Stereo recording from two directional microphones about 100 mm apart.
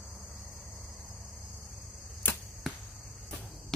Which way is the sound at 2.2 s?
20° left (ahead or behind).